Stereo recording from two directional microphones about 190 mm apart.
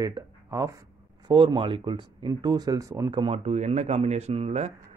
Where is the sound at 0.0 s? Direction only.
20° right (ahead or behind).